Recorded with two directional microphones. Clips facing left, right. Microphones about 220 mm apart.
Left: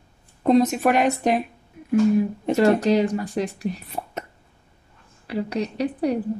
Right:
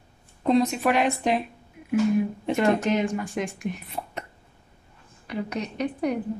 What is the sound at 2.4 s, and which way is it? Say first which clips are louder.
Speech: left 6 dB; 40° left (ahead or behind).